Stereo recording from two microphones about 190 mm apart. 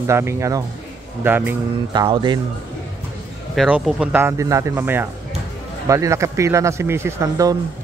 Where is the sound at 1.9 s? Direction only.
25° right (ahead or behind).